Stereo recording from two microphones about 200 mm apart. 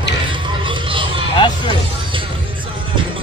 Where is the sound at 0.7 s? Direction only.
25° right (ahead or behind).